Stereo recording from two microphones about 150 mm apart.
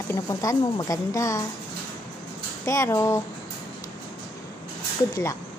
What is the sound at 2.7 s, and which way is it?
Speech, 20° left (ahead or behind).